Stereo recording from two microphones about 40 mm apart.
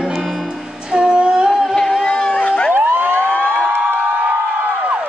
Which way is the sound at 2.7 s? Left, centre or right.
Right.